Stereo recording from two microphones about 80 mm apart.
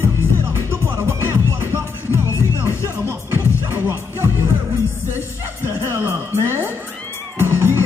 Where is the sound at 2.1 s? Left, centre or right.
Left.